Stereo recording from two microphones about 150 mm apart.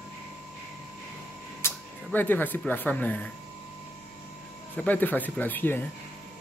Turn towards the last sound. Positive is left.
turn(degrees=10)  # may be behind; listen again after turning